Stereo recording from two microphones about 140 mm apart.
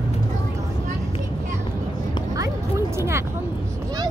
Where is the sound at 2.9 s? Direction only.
20° right (ahead or behind).